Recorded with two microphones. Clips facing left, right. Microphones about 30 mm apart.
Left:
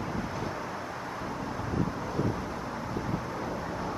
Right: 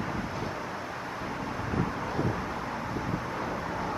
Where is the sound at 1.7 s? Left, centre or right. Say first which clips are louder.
Right 1 dB; centre.